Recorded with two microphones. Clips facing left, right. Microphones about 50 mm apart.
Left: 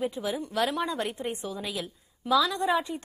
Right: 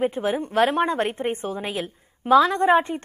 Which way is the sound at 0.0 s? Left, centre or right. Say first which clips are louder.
Right 7 dB; right.